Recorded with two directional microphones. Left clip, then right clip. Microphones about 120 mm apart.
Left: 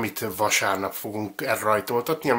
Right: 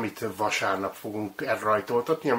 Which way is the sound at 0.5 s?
20° left (ahead or behind).